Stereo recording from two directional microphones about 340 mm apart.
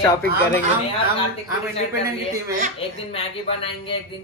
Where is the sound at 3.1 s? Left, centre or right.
Centre.